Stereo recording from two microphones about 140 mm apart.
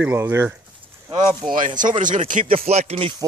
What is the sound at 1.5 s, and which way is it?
Speech, 70° right (ahead or behind).